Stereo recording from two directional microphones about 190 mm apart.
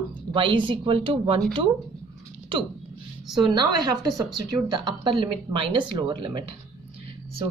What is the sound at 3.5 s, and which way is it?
A woman's voice, 20° right (ahead or behind).